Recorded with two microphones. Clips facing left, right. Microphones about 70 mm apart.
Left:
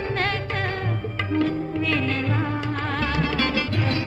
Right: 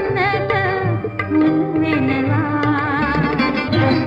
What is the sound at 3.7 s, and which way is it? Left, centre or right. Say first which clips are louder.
Music: right 10 dB; right.